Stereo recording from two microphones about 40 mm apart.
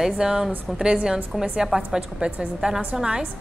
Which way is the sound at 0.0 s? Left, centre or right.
Centre.